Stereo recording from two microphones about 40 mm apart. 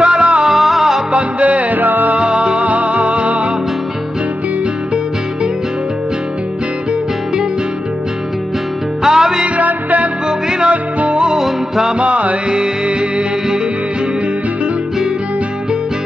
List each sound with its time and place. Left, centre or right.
0.0 s music: right
0.4 s music: centre
1.1 s music: right
2.1 s music: right
2.6 s music: right
9.0 s music: centre
9.6 s music: right
11.1 s music: centre
11.4 s music: centre
12.0 s music: right